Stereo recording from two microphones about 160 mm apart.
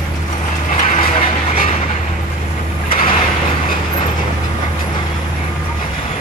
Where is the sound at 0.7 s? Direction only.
45° left (ahead or behind).